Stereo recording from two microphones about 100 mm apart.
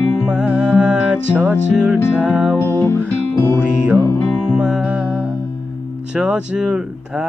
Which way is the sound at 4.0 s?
25° left (ahead or behind).